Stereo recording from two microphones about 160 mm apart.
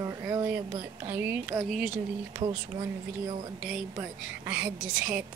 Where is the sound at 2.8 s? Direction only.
35° right (ahead or behind).